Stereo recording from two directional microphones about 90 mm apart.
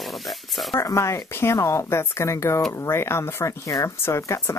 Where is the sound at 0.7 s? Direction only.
35° left (ahead or behind).